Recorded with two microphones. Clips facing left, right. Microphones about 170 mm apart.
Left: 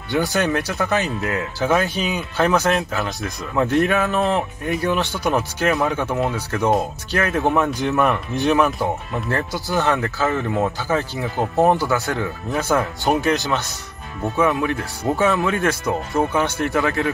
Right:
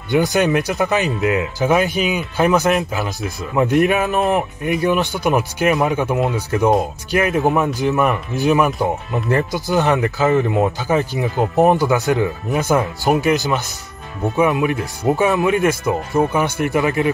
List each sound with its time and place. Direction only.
0.1 s speech: 15° right (ahead or behind)
7.7 s a man's voice: centre (ahead or behind)
9.3 s speech: 20° right (ahead or behind)
14.3 s speech: 15° right (ahead or behind)